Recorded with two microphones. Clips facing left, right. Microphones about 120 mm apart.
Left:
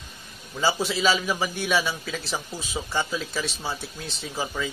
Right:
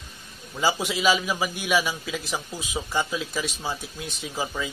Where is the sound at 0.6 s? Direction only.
15° right (ahead or behind).